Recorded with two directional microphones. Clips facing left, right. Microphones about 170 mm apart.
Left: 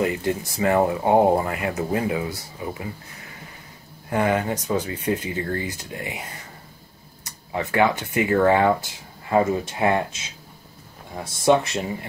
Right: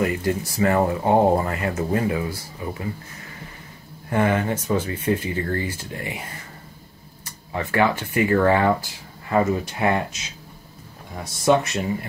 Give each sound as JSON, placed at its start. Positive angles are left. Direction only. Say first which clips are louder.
{"t": 0.0, "sound": "speech", "louder": "right 1 dB", "side_deg": 20}
{"t": 4.1, "sound": "speech", "louder": "right 1 dB", "side_deg": 15}
{"t": 7.5, "sound": "speech", "louder": "even", "side_deg": 15}
{"t": 11.4, "sound": "speech", "louder": "even", "side_deg": 25}